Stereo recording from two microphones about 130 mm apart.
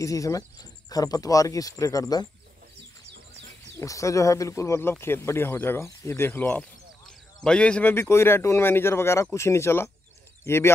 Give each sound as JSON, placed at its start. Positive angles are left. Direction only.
{"t": 0.0, "sound": "speech", "side_deg": 25}
{"t": 3.7, "sound": "speech", "side_deg": 25}